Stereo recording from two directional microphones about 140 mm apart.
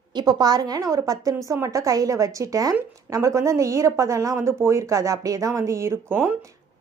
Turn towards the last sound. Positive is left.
turn(degrees=-15)  # may be behind; listen again after turning